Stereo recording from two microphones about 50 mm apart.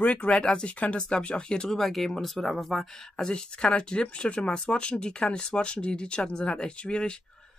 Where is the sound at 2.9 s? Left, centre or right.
Centre.